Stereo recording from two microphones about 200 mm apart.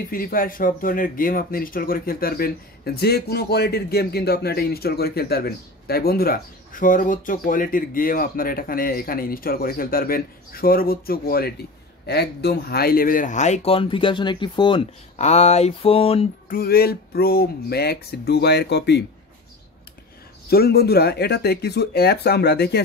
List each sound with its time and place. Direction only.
0.1 s speech: 45° left (ahead or behind); by 16.3 s 30° left (ahead or behind)
16.4 s speech: 50° left (ahead or behind)
20.4 s speech: 50° left (ahead or behind)